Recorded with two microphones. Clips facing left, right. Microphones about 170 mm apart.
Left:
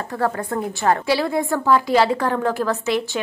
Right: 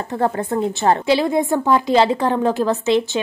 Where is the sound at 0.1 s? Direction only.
25° right (ahead or behind).